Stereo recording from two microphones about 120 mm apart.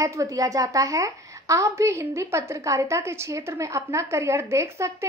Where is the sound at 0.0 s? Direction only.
25° right (ahead or behind).